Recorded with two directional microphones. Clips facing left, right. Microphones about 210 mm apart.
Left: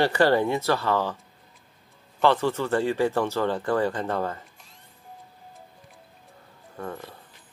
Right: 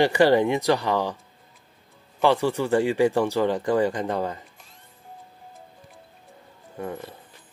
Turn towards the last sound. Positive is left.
turn(degrees=-20)  # may be behind; listen again after turning